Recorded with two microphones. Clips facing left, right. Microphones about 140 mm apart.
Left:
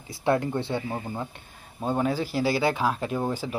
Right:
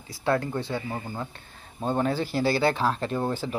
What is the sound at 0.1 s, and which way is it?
Speech, 20° left (ahead or behind).